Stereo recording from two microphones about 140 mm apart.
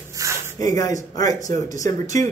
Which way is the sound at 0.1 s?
20° right (ahead or behind).